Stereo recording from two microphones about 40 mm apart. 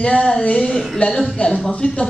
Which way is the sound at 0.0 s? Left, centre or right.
Left.